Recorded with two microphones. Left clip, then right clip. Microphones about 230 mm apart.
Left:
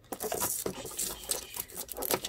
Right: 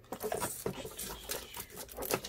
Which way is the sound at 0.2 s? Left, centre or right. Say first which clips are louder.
Left 2 dB; left.